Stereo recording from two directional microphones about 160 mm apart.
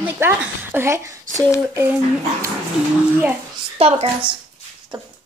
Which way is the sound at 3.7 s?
40° right (ahead or behind).